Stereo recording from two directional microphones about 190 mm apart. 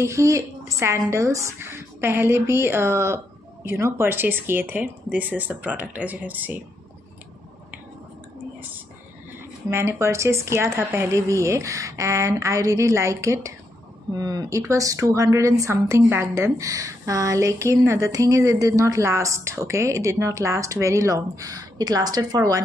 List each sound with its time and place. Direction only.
0.0 s speech: 15° right (ahead or behind)
9.7 s speech: 15° right (ahead or behind)